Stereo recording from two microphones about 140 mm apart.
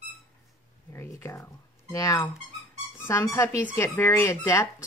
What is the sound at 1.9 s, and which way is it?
Speech, 25° left (ahead or behind).